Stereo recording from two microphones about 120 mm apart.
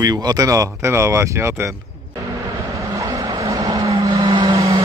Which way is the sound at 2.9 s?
25° right (ahead or behind).